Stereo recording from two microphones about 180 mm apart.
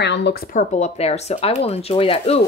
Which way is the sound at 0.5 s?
40° left (ahead or behind).